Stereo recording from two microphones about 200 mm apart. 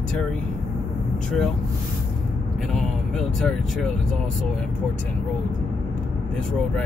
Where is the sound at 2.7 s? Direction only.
Centre (ahead or behind).